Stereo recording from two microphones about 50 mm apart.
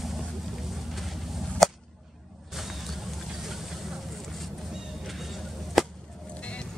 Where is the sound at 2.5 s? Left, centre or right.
Centre.